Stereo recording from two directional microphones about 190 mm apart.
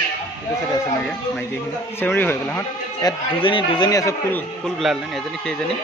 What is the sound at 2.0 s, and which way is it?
A man's voice, 10° left (ahead or behind).